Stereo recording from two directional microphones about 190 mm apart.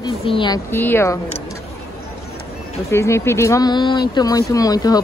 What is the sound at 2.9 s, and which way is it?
A woman's voice, 15° left (ahead or behind).